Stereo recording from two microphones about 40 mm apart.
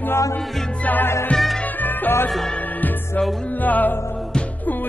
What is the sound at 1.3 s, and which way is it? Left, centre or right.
Music, left.